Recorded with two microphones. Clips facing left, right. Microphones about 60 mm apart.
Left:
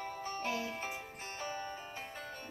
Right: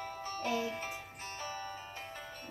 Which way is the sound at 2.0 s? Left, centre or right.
Centre.